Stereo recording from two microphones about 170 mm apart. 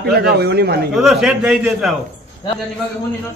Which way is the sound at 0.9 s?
Centre (ahead or behind).